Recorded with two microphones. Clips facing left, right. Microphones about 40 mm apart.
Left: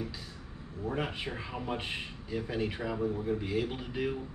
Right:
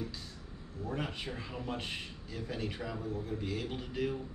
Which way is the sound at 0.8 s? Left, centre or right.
Centre.